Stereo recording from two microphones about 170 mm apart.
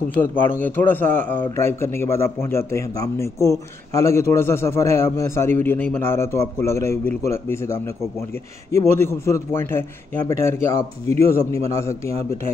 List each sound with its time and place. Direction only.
0.1 s a man's voice: 10° left (ahead or behind)